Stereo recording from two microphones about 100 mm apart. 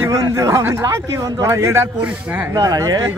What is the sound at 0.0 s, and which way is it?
Speech, 30° right (ahead or behind).